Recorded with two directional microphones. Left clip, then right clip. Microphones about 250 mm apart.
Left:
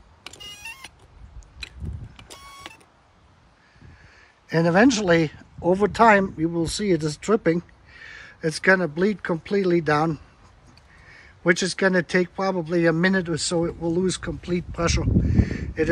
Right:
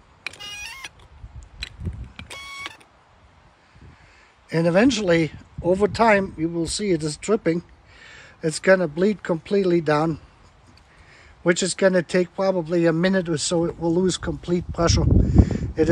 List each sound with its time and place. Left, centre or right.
4.5 s speech: centre